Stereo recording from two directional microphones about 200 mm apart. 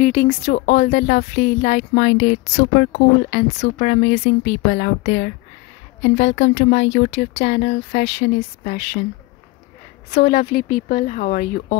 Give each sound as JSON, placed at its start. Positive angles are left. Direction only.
{"t": 0.0, "sound": "speech", "side_deg": 40}
{"t": 10.1, "sound": "speech", "side_deg": 50}